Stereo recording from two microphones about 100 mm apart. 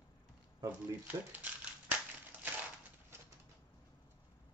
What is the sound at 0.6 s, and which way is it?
Speech, 15° right (ahead or behind).